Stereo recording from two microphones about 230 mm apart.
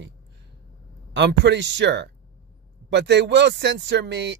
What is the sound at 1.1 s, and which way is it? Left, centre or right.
Speech, right.